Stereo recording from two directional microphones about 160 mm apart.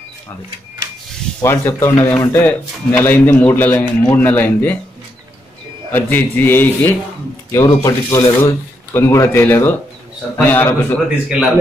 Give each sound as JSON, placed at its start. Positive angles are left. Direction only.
{"t": 1.4, "sound": "a man's voice", "side_deg": 15}
{"t": 5.9, "sound": "a man's voice", "side_deg": 10}
{"t": 11.2, "sound": "a man's voice", "side_deg": -5}